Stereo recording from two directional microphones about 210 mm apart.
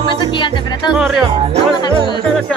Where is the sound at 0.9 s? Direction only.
5° right (ahead or behind).